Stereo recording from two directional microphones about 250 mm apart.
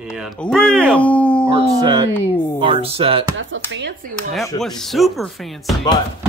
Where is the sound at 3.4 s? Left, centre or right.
Right.